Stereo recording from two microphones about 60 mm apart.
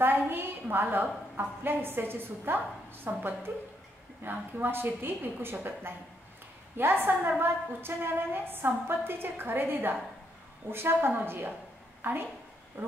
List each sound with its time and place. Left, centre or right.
0.0 s a woman's voice: right